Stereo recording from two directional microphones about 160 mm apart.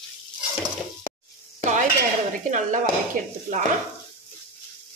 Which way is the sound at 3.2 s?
65° right (ahead or behind).